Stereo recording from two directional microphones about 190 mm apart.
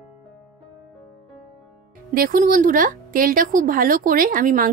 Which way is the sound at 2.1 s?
45° right (ahead or behind).